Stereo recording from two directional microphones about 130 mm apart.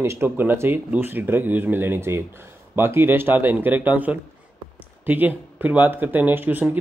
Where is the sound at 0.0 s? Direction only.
20° right (ahead or behind).